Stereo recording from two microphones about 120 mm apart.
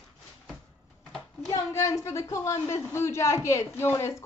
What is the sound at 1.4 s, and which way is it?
A woman's voice, 25° left (ahead or behind).